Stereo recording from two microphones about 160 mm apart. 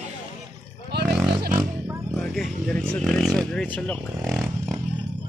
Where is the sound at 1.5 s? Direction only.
15° right (ahead or behind).